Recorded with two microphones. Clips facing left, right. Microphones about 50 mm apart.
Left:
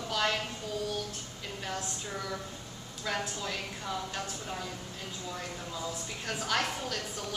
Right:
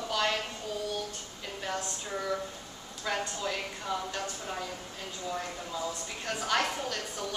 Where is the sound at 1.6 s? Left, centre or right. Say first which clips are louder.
Right 2 dB; centre.